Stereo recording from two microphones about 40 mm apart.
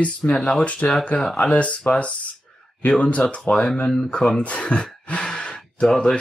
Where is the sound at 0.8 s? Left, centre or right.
Left.